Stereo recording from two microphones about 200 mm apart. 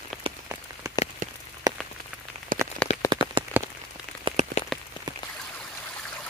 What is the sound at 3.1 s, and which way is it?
Rain on surface, 25° right (ahead or behind).